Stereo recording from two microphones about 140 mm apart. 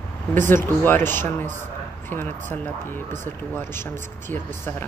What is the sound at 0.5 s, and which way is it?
A woman's voice, 15° left (ahead or behind).